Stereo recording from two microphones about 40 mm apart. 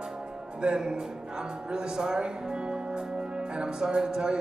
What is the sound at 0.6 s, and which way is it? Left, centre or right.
Speech, right.